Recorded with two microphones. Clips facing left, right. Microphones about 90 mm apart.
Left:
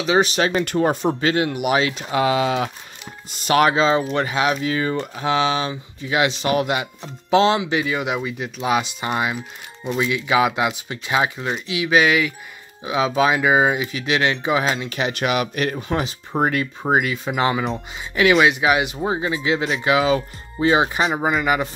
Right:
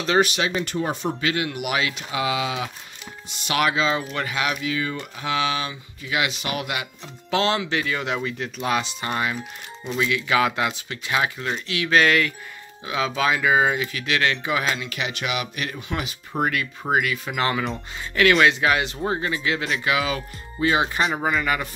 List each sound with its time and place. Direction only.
0.2 s speech: 15° left (ahead or behind)
0.6 s speech: 55° left (ahead or behind)
1.2 s speech: 30° left (ahead or behind); by 12.4 s 10° left (ahead or behind)
12.8 s speech: 20° left (ahead or behind)
21.0 s speech: 10° left (ahead or behind)